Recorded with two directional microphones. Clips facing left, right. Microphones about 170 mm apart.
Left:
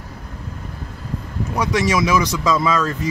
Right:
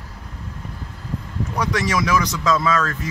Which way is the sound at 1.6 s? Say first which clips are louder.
Left 3 dB; 10° left (ahead or behind).